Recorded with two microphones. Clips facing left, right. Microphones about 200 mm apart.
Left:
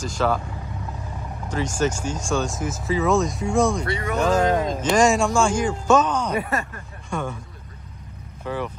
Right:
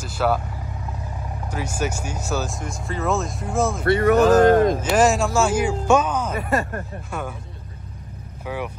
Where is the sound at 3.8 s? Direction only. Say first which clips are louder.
Right 9 dB; 60° right (ahead or behind).